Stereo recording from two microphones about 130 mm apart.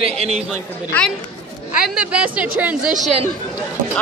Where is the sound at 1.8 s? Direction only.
5° right (ahead or behind).